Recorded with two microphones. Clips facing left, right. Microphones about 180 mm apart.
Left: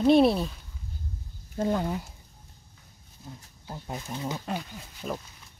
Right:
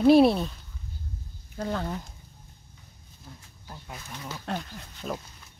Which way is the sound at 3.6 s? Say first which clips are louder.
Left 6 dB; 25° left (ahead or behind).